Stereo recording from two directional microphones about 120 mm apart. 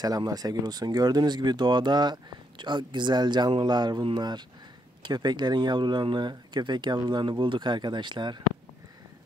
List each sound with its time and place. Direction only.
0.0 s speech: 30° right (ahead or behind)